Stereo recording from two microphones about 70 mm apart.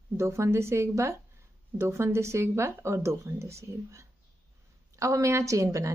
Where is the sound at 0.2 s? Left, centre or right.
Right.